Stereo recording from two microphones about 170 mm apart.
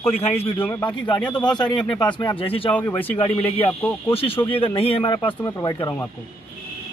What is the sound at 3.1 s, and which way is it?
A man's voice, 35° left (ahead or behind).